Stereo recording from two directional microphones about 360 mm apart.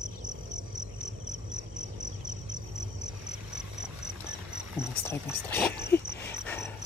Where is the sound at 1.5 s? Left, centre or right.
Right.